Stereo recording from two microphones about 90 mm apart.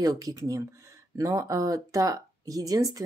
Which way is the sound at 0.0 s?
40° right (ahead or behind).